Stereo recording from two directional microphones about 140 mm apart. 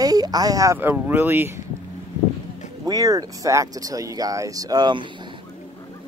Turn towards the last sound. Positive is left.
turn(degrees=-30)  # may be behind; listen again after turning